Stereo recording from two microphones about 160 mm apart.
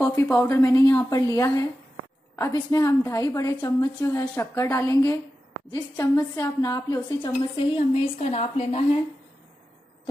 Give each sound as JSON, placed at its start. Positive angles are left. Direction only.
{"t": 0.0, "sound": "a woman's voice", "side_deg": 15}
{"t": 7.7, "sound": "a woman's voice", "side_deg": 35}